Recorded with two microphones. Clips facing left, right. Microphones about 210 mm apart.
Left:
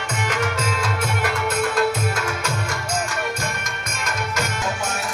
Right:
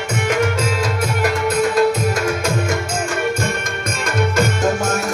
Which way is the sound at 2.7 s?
50° right (ahead or behind).